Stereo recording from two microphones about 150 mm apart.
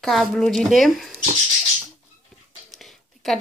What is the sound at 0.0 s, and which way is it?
Speech, centre (ahead or behind).